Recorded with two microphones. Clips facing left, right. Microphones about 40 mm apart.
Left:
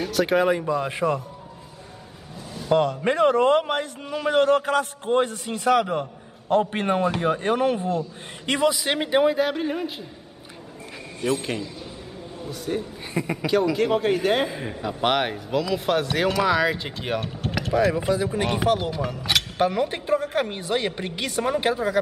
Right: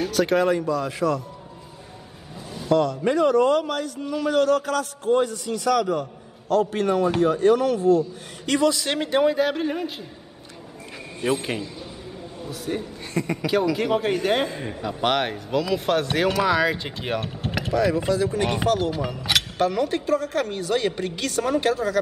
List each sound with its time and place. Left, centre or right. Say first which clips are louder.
0.0 s speech: even; centre; by 1.2 s left
2.7 s a man's voice: even; left
8.7 s speech: left 1 dB; centre
11.1 s a man's voice: right 1 dB; centre
13.1 s speech: right 1 dB; centre
13.7 s speech: left 1 dB; centre
17.8 s speech: right 1 dB; centre
18.9 s speech: right 1 dB; centre
19.6 s a woman's voice: even; centre